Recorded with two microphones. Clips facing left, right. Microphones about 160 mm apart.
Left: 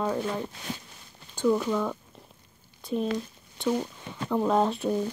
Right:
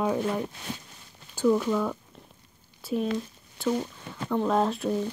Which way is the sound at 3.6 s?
5° left (ahead or behind).